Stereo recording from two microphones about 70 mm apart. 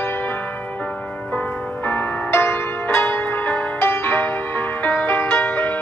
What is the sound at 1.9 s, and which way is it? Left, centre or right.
Music, left.